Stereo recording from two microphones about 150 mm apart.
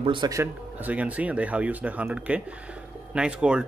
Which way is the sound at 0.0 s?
35° right (ahead or behind).